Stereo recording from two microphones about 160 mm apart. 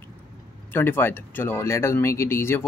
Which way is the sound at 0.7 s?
15° left (ahead or behind).